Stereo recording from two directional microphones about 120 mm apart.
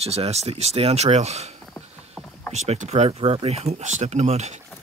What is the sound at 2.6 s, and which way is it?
Speech, 65° right (ahead or behind).